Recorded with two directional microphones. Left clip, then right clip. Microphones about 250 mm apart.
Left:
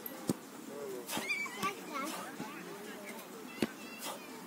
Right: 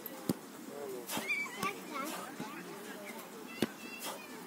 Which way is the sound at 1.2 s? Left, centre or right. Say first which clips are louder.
Right 1 dB; centre.